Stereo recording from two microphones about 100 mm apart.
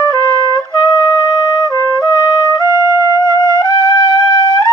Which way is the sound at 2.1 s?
30° right (ahead or behind).